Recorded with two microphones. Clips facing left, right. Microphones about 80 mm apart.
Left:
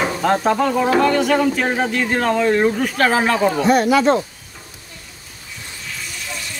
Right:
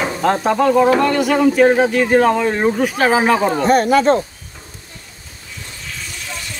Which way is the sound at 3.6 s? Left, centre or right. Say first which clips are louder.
Right 1 dB; right.